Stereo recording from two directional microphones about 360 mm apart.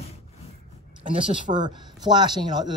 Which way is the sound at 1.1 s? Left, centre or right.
Centre.